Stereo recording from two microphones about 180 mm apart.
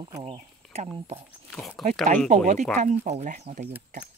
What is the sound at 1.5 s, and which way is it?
Speech, centre (ahead or behind).